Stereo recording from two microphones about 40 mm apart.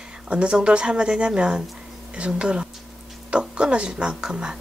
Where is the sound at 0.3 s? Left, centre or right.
Right.